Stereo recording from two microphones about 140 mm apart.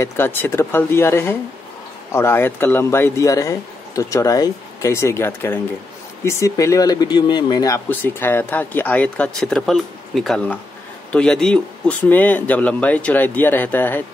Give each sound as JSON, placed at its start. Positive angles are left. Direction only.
{"t": 0.0, "sound": "speech", "side_deg": 20}
{"t": 7.9, "sound": "speech", "side_deg": 15}